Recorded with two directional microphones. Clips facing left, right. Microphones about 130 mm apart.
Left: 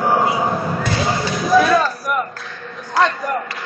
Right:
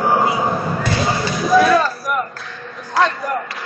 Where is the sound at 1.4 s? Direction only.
Centre (ahead or behind).